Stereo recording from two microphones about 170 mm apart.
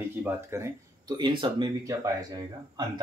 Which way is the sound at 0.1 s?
10° right (ahead or behind).